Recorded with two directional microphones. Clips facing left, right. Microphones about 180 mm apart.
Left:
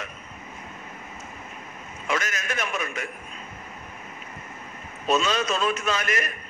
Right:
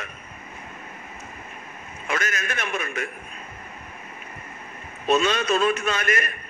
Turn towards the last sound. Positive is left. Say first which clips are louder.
# right 2 dB
turn(degrees=-55)  # may be behind; listen again after turning